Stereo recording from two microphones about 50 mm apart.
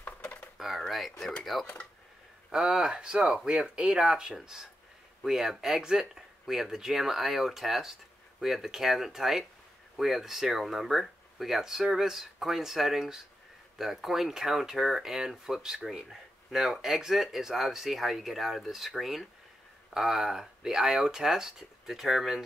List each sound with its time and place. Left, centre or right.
0.6 s a sound: centre
1.4 s speech: centre
2.5 s speech: centre